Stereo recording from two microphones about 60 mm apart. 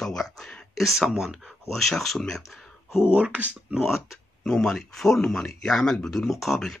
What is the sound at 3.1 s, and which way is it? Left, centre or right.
Speech, right.